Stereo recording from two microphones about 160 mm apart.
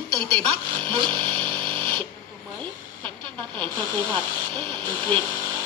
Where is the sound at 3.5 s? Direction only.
10° left (ahead or behind).